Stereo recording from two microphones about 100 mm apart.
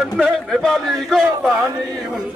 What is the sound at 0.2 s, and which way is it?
Speech, centre (ahead or behind).